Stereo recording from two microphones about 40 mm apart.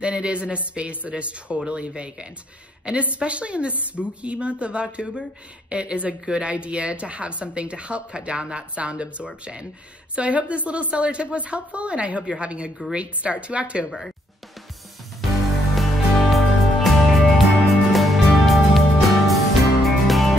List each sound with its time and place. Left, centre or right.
0.0 s a woman's voice: right
6.2 s a woman's voice: right
15.7 s music: centre